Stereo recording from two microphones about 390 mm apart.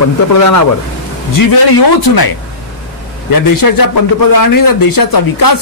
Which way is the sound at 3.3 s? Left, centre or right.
Left.